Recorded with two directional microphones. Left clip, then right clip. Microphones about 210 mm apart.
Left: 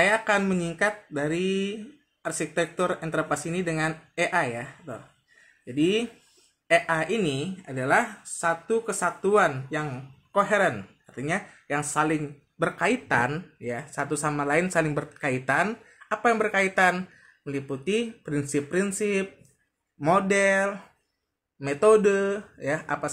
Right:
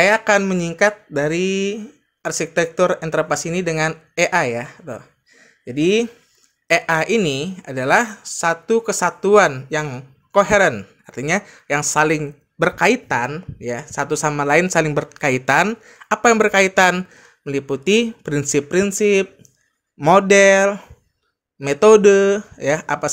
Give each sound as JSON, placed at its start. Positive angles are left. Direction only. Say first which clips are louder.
{"t": 0.0, "sound": "speech", "louder": "right 8 dB", "side_deg": -40}
{"t": 13.1, "sound": "speech", "louder": "right 4 dB", "side_deg": -15}
{"t": 13.6, "sound": "speech", "louder": "right 9 dB", "side_deg": -35}